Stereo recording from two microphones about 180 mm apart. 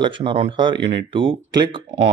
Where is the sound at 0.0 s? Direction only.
30° right (ahead or behind).